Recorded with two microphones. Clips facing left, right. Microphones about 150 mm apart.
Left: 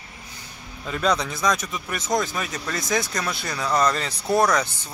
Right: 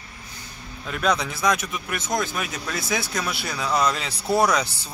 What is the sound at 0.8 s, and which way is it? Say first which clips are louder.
Speech: left 1 dB; centre (ahead or behind).